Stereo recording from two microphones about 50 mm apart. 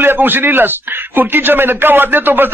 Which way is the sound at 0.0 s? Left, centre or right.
Right.